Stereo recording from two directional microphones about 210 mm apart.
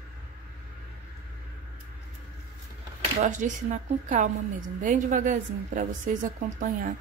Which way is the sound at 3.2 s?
35° right (ahead or behind).